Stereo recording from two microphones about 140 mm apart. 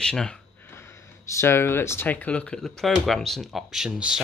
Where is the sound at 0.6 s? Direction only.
15° left (ahead or behind).